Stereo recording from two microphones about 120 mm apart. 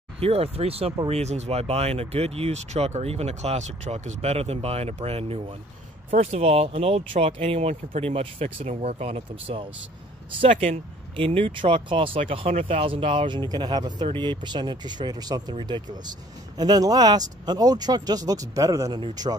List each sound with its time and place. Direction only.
0.2 s speech: 55° right (ahead or behind); by 18.9 s 30° right (ahead or behind)